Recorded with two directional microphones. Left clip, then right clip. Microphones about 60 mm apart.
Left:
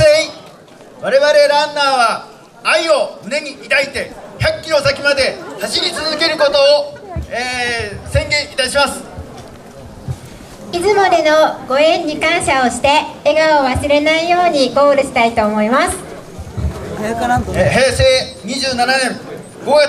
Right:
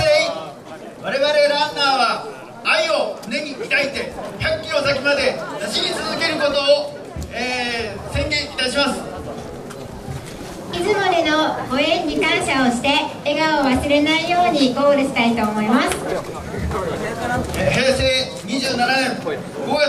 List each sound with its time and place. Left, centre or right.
0.0 s a sound: left
1.0 s a woman's voice: left
10.7 s a woman's voice: left
17.0 s a woman's voice: left